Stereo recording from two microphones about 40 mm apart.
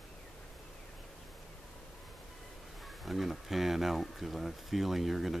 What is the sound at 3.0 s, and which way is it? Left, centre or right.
Speech, centre.